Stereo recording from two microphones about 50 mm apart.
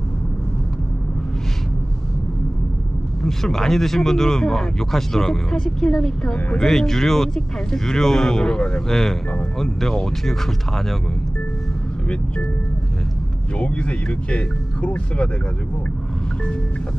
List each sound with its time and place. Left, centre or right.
3.3 s speech: centre
13.6 s speech: left